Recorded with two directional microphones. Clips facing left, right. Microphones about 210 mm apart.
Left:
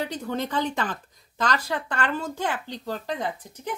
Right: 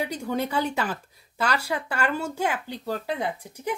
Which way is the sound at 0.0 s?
10° right (ahead or behind).